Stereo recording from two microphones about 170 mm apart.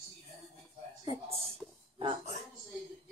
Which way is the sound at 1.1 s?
35° right (ahead or behind).